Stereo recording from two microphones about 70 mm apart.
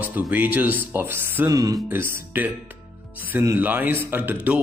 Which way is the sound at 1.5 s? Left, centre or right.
Right.